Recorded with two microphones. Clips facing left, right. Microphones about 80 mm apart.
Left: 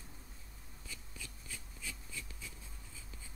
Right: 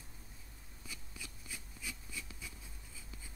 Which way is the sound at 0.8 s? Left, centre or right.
Centre.